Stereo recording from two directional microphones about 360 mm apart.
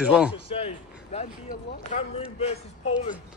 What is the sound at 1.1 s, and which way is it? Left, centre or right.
Speech, centre.